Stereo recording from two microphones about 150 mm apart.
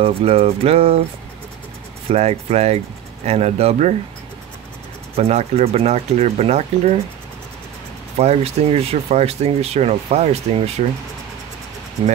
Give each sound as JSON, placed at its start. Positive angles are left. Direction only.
{"t": 0.0, "sound": "speech", "side_deg": -40}
{"t": 2.0, "sound": "speech", "side_deg": -45}
{"t": 5.1, "sound": "speech", "side_deg": -45}
{"t": 8.2, "sound": "speech", "side_deg": -45}